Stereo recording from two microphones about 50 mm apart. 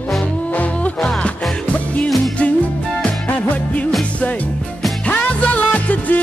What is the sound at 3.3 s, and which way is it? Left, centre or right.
Music, left.